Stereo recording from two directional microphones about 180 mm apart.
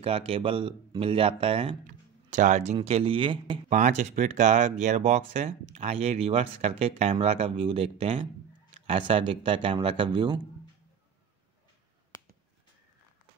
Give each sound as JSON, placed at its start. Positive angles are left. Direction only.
{"t": 0.0, "sound": "speech", "side_deg": -30}
{"t": 1.9, "sound": "speech", "side_deg": -45}
{"t": 3.7, "sound": "speech", "side_deg": -40}